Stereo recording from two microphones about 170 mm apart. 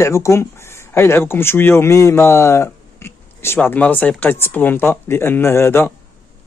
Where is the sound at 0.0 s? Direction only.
15° left (ahead or behind).